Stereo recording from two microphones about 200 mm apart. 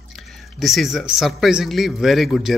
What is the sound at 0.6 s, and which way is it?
Speech, centre (ahead or behind).